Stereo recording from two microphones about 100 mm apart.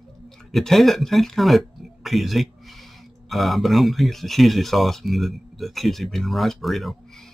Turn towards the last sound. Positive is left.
turn(degrees=0)  # may be behind; listen again after turning